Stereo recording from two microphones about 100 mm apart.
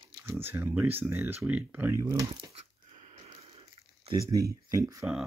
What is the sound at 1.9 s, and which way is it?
Speech, 30° right (ahead or behind).